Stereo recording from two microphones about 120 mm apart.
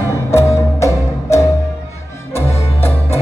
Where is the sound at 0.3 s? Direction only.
25° left (ahead or behind).